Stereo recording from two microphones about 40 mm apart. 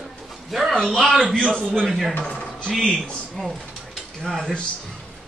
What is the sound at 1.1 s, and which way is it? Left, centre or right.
Speech, centre.